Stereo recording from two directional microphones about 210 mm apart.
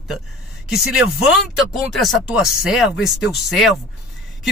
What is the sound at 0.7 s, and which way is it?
Speech, centre (ahead or behind).